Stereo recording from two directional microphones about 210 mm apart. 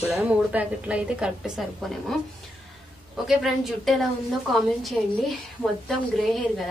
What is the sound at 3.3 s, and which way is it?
A woman's voice, centre (ahead or behind).